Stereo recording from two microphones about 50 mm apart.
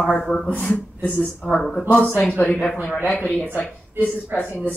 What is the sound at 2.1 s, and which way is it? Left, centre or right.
A man's voice, left.